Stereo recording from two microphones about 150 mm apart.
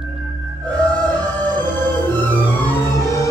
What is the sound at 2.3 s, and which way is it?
Music, 15° left (ahead or behind).